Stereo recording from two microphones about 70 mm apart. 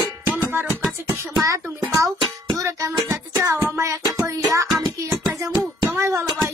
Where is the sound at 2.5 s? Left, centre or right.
Right.